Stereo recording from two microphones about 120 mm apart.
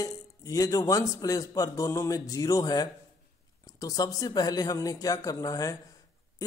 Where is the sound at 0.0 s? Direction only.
30° left (ahead or behind).